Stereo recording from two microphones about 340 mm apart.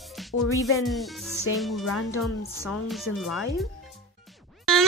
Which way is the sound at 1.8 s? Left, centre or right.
Left.